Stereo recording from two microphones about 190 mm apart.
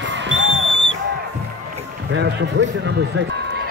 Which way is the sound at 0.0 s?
70° right (ahead or behind).